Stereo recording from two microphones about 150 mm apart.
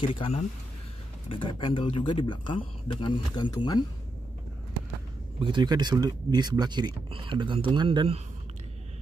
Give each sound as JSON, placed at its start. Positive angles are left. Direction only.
{"t": 0.0, "sound": "speech", "side_deg": 35}
{"t": 5.4, "sound": "speech", "side_deg": -30}